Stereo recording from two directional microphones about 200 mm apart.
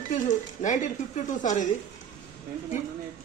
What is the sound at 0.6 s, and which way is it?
A man's voice, 40° left (ahead or behind).